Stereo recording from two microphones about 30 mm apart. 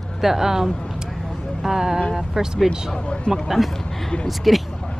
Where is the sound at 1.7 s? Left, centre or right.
Centre.